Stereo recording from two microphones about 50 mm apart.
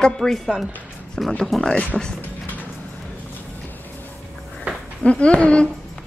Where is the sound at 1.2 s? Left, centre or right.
Centre.